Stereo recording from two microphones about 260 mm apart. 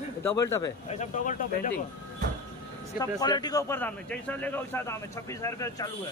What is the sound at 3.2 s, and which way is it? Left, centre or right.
A man's voice, centre.